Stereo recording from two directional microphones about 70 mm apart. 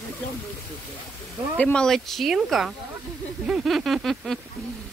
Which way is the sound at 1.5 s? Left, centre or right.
Centre.